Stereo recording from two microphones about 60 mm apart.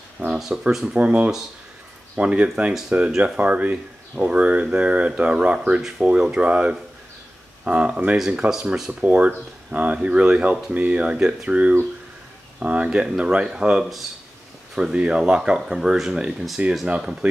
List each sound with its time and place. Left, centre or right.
0.3 s speech: centre
0.9 s speech: right
9.0 s speech: right